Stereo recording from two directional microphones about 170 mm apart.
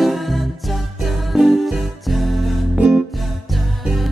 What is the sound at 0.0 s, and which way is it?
Music, centre (ahead or behind).